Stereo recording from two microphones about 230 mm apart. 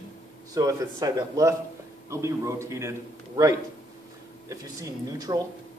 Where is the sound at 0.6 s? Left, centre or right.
Centre.